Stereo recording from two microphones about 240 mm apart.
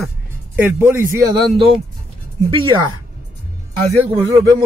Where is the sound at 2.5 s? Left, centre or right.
Centre.